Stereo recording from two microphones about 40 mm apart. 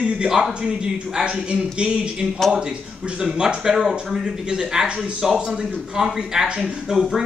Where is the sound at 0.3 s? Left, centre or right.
Centre.